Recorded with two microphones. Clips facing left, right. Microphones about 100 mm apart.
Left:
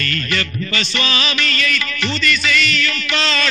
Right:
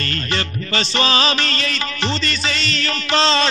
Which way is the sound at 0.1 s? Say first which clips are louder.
Left 1 dB; 30° right (ahead or behind).